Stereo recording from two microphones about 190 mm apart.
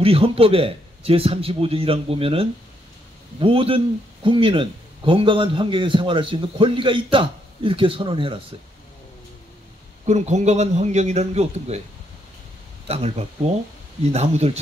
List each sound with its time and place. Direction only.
0.0 s speech: 30° right (ahead or behind)
10.0 s a man's voice: 35° right (ahead or behind)
12.8 s a man's voice: 30° right (ahead or behind)